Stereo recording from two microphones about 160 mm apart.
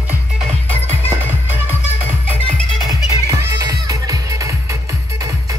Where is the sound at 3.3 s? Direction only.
20° right (ahead or behind).